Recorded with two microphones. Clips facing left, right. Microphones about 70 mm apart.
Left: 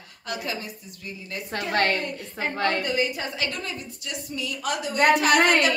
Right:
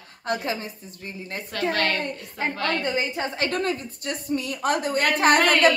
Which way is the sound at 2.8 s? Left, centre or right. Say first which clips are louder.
Even; right.